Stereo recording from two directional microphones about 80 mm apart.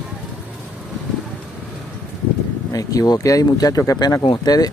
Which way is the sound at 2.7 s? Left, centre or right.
Left.